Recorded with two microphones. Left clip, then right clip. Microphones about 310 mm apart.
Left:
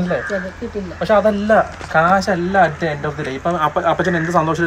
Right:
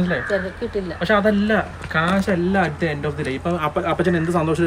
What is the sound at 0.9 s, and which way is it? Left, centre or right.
Speech, centre.